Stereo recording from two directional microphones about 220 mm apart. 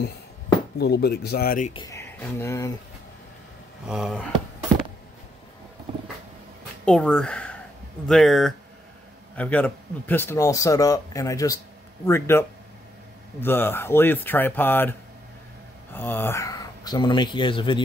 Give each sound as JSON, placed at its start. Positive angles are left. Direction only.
{"t": 0.7, "sound": "speech", "side_deg": 50}
{"t": 1.7, "sound": "speech", "side_deg": 20}
{"t": 3.9, "sound": "speech", "side_deg": 0}
{"t": 6.9, "sound": "speech", "side_deg": 5}